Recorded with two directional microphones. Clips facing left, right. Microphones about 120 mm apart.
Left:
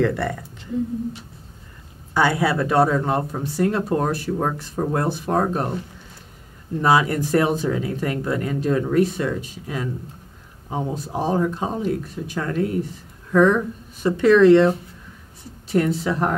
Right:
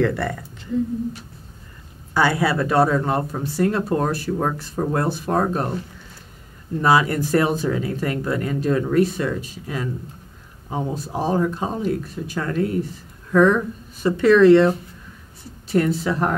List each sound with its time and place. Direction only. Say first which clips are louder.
0.0 s speech: even; 20° left (ahead or behind)
2.1 s speech: even; 15° left (ahead or behind)
6.8 s speech: even; 15° left (ahead or behind)